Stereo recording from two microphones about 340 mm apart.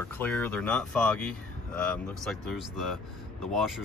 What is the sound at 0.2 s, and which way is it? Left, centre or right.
Speech, centre.